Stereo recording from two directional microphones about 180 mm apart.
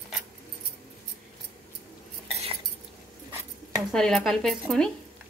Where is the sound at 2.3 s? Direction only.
35° right (ahead or behind).